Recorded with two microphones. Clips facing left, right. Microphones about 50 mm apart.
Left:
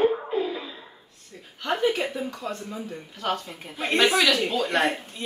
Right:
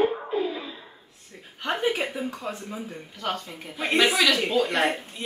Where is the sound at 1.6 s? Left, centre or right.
Centre.